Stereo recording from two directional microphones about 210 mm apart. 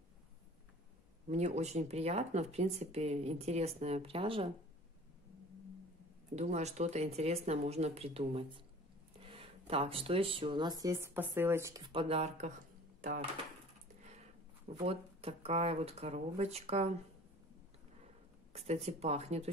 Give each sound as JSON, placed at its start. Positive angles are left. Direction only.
{"t": 1.3, "sound": "speech", "side_deg": -30}
{"t": 6.3, "sound": "speech", "side_deg": -30}
{"t": 14.9, "sound": "speech", "side_deg": -30}
{"t": 18.5, "sound": "speech", "side_deg": -30}